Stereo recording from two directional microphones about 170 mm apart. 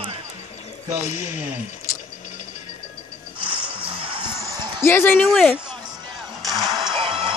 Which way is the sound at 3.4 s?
30° right (ahead or behind).